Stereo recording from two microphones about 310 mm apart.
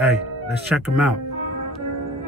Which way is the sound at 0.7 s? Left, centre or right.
Centre.